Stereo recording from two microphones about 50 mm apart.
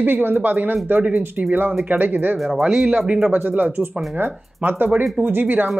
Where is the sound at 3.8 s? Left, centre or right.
Right.